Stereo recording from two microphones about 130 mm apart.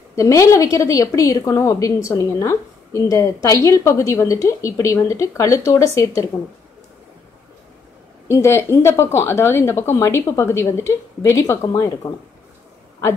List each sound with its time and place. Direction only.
0.1 s a woman's voice: 25° left (ahead or behind)
8.3 s a woman's voice: 20° left (ahead or behind)